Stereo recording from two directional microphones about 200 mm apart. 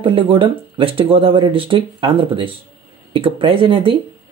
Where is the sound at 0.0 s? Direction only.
25° right (ahead or behind).